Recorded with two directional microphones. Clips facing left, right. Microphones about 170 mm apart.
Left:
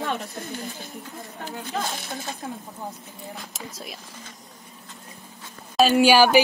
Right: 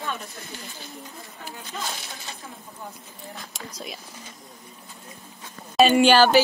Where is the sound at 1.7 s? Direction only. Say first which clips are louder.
Left 5 dB; 75° left (ahead or behind).